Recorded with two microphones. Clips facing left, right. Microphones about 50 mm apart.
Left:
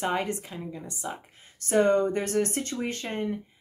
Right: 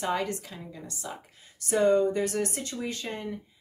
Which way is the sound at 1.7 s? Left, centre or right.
Left.